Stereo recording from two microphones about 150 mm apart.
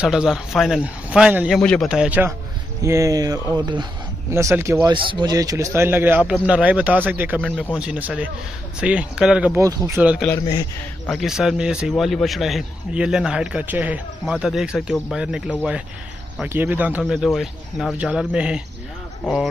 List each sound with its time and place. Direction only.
0.0 s speech: 5° right (ahead or behind)
1.6 s a man's voice: 5° left (ahead or behind)
1.9 s speech: 5° right (ahead or behind); by 3.8 s 30° right (ahead or behind)
4.3 s speech: 20° right (ahead or behind)
4.8 s speech: 30° right (ahead or behind); by 7.4 s 10° right (ahead or behind)
7.4 s a man's voice: 10° left (ahead or behind)
7.7 s speech: 5° right (ahead or behind)
9.6 s speech: 20° right (ahead or behind)
9.9 s speech: 5° right (ahead or behind)